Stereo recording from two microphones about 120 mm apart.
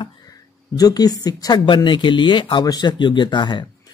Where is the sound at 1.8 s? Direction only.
40° left (ahead or behind).